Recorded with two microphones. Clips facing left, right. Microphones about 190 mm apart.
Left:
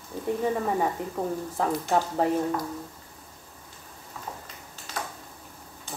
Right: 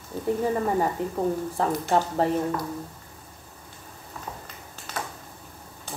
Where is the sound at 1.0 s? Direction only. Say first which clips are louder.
Right 4 dB; centre (ahead or behind).